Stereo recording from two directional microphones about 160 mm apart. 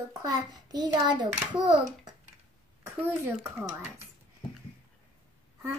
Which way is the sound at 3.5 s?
15° right (ahead or behind).